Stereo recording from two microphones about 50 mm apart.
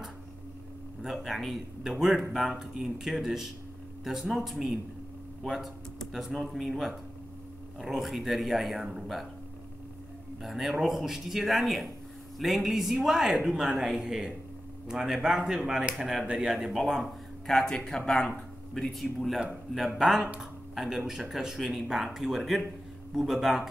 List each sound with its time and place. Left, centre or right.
1.0 s speech: centre
6.1 s speech: centre
10.4 s speech: centre
17.5 s speech: centre
18.7 s speech: centre